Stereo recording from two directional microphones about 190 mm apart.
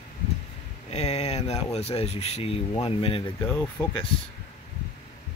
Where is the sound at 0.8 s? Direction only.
35° left (ahead or behind).